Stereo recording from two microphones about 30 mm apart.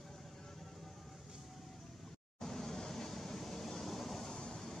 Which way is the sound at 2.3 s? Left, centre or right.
Centre.